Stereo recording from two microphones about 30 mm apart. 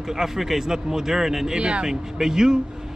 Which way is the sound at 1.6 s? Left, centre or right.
Right.